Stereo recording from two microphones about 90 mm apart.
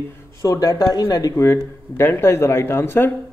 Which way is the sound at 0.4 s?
40° left (ahead or behind).